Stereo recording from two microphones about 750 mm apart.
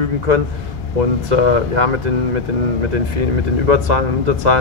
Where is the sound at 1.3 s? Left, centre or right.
Right.